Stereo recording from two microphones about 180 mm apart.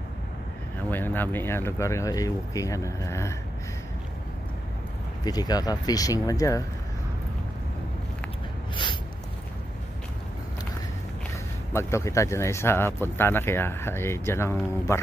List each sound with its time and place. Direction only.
0.8 s speech: 10° left (ahead or behind)
5.2 s speech: 20° left (ahead or behind)
11.7 s speech: 15° left (ahead or behind)